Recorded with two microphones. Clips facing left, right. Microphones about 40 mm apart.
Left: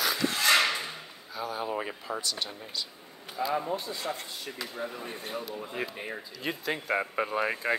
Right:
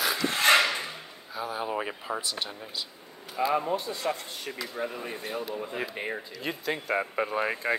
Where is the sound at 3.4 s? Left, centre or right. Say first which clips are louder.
Right 3 dB; right.